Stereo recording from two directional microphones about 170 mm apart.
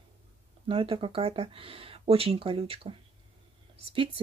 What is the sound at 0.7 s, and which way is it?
Speech, 30° right (ahead or behind).